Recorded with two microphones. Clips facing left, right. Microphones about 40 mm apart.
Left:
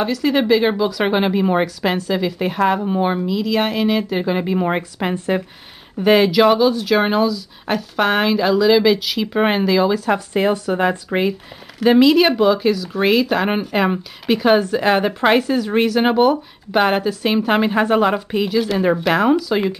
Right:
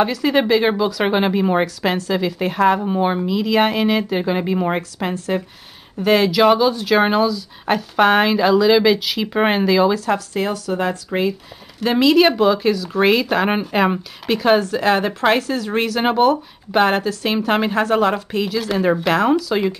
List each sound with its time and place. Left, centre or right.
0.0 s speech: centre
4.9 s speech: centre
10.1 s speech: left
11.8 s speech: centre